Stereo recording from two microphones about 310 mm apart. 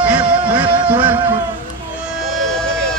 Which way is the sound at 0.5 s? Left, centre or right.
Centre.